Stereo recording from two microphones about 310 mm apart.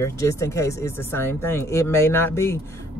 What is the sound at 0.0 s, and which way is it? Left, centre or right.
Speech, centre.